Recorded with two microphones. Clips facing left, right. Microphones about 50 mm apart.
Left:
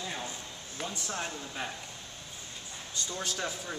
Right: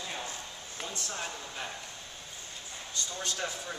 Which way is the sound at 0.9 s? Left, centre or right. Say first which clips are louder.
Even; centre.